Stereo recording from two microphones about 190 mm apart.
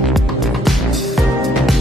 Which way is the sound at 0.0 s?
Centre (ahead or behind).